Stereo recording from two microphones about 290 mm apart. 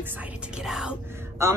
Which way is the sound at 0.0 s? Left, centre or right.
Centre.